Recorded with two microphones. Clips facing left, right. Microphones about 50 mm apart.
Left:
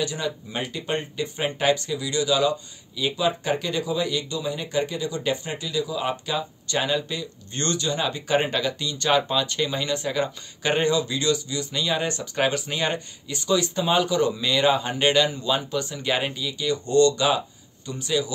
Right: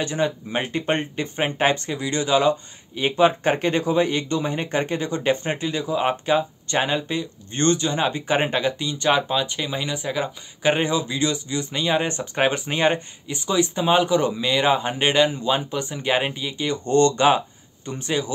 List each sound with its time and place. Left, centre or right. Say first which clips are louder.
0.0 s speech: right 4 dB; right